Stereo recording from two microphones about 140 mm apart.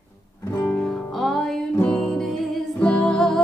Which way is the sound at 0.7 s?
Centre (ahead or behind).